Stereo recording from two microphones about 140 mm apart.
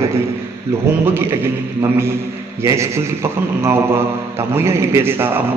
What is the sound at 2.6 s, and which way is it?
A man's voice, 20° right (ahead or behind).